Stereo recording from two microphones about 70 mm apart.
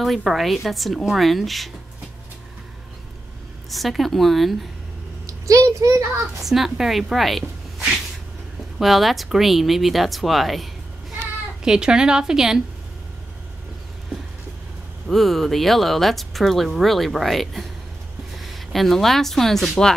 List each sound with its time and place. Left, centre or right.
0.0 s speech: centre
3.7 s speech: centre
5.2 s a child's voice: right
6.4 s speech: centre
8.7 s speech: centre
11.6 s a woman's voice: centre
15.0 s speech: centre